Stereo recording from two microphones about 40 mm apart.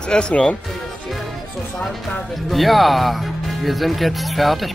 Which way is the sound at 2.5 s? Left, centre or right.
Centre.